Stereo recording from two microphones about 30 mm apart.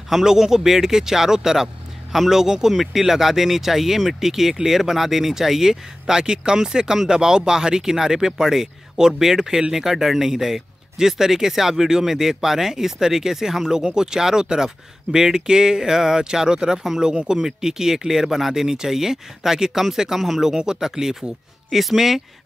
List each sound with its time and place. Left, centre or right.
0.1 s speech: centre
20.4 s speech: right